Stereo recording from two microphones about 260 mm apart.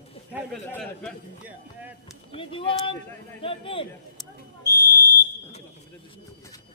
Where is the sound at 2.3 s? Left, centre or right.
Centre.